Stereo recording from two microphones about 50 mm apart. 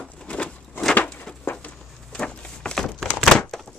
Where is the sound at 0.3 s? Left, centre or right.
Left; by 3.7 s centre.